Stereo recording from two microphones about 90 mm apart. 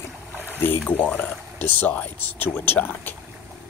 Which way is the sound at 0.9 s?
20° left (ahead or behind).